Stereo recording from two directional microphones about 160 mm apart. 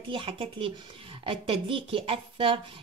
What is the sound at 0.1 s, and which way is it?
A child's voice, 35° right (ahead or behind).